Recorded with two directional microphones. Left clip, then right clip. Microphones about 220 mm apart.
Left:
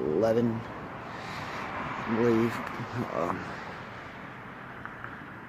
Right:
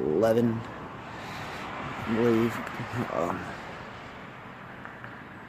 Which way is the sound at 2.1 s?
50° right (ahead or behind).